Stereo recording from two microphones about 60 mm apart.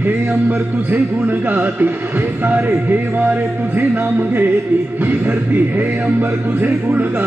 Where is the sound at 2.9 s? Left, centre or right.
Right.